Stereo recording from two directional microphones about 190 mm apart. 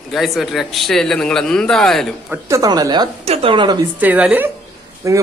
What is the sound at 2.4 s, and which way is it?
A man's voice, 20° right (ahead or behind).